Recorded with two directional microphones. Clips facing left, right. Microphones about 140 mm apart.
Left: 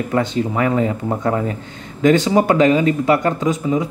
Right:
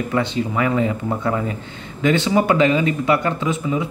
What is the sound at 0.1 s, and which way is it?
Speech, 40° left (ahead or behind).